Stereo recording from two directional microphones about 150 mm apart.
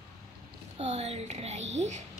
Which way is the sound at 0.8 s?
45° right (ahead or behind).